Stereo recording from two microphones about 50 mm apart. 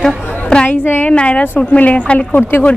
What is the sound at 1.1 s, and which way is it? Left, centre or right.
Speech, left.